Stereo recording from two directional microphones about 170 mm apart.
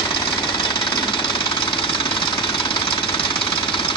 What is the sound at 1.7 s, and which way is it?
Vehicle, 30° left (ahead or behind).